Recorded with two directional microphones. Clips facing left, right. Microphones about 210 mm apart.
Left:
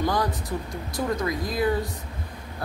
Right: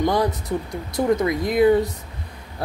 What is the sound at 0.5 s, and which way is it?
Speech, 20° right (ahead or behind).